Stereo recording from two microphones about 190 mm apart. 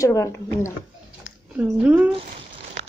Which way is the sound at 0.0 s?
15° left (ahead or behind).